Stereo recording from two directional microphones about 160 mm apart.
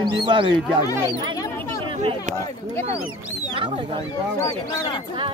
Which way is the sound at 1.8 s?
35° right (ahead or behind).